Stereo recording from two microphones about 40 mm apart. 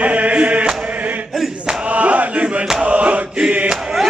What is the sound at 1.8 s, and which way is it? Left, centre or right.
Chant, right.